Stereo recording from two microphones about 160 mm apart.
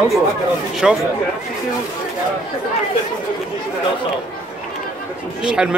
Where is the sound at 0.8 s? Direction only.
Centre (ahead or behind).